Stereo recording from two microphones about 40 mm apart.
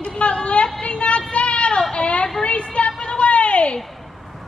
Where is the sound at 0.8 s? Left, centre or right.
Left.